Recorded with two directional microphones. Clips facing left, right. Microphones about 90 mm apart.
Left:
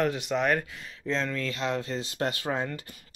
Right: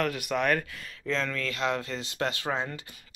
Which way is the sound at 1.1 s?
30° left (ahead or behind).